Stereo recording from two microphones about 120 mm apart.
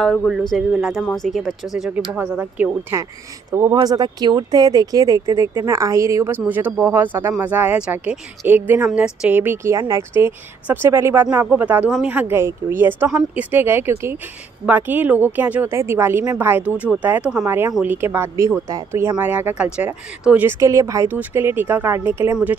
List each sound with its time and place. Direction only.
0.0 s a woman's voice: 5° left (ahead or behind)
3.5 s a woman's voice: 30° right (ahead or behind)